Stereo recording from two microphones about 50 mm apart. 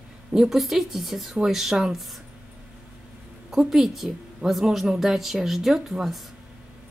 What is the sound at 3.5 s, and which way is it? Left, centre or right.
A woman's voice, centre.